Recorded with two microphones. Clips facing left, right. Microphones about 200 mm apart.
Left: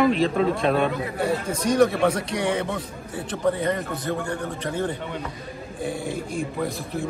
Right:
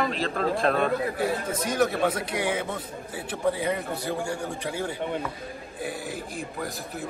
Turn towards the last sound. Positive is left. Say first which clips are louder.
# left 6 dB
turn(degrees=0)  # may be behind; listen again after turning